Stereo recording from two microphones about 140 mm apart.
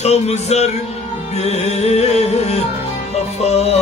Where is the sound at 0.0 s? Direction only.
50° left (ahead or behind).